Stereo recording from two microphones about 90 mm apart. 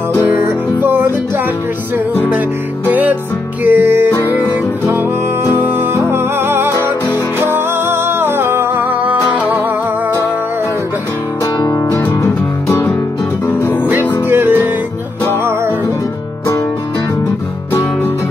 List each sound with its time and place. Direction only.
0.3 s music: 20° right (ahead or behind)
2.9 s music: 20° right (ahead or behind)
5.4 s music: 25° right (ahead or behind)
11.6 s music: 35° left (ahead or behind)
13.8 s music: 25° right (ahead or behind)